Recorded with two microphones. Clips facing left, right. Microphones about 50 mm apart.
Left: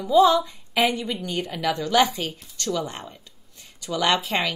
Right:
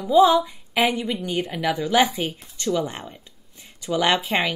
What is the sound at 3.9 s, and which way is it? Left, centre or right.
Speech, right.